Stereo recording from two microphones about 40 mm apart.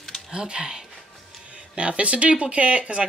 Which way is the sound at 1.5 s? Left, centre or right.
Right.